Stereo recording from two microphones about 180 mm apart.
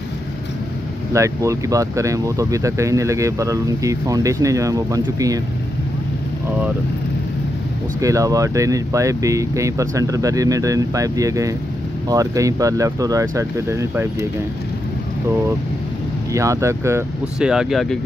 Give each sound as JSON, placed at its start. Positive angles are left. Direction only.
{"t": 1.1, "sound": "speech", "side_deg": -15}
{"t": 8.0, "sound": "speech", "side_deg": -20}
{"t": 16.3, "sound": "speech", "side_deg": -15}
{"t": 17.4, "sound": "speech", "side_deg": -5}